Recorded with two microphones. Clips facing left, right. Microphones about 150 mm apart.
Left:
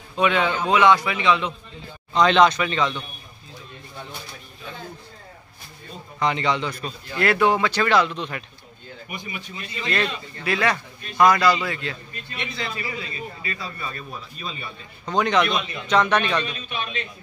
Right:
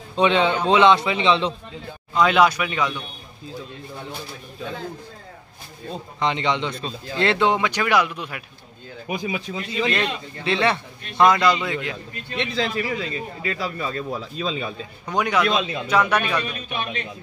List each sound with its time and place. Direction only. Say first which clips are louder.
0.1 s a man's voice: right 3 dB; 25° right (ahead or behind)
2.1 s speech: left 1 dB; 5° right (ahead or behind)
6.1 s a man's voice: even; 20° right (ahead or behind)
9.5 s a man's voice: right 9 dB; 90° right
9.8 s a man's voice: left 3 dB; 20° right (ahead or behind)
12.4 s a man's voice: right 7 dB; 90° right
15.0 s speech: left 1 dB; 10° right (ahead or behind)
15.4 s a man's voice: right 3 dB; 90° right
15.9 s speech: left 1 dB; 10° right (ahead or behind)